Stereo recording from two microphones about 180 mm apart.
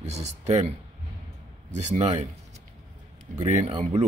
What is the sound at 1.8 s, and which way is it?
Speech, 40° right (ahead or behind).